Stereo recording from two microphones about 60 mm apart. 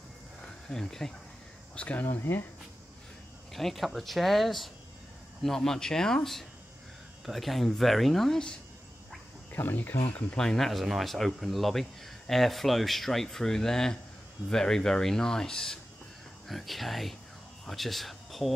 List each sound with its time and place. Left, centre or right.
0.4 s a sound: centre
1.8 s speech: left
2.0 s speech: left
3.5 s speech: centre
9.5 s speech: left
10.3 s speech: centre